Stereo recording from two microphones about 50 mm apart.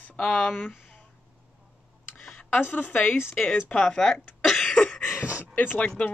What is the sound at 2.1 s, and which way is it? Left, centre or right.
Speech, left.